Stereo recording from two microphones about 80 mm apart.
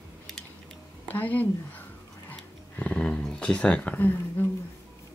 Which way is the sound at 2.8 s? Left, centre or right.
Centre.